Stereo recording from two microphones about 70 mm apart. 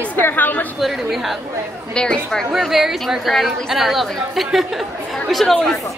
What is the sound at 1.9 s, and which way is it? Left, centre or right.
Speech, centre.